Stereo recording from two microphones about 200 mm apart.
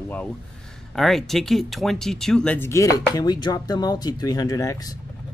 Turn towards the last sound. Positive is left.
turn(degrees=15)  # may be behind; listen again after turning